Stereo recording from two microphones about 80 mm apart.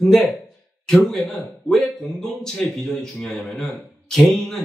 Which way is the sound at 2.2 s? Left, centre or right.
Centre.